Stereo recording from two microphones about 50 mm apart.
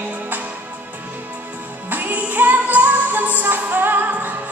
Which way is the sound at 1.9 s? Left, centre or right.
Right.